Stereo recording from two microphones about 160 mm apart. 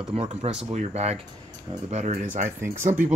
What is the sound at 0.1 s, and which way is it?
Speech, 40° right (ahead or behind).